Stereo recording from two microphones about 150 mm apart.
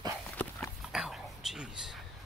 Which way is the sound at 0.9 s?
Centre (ahead or behind).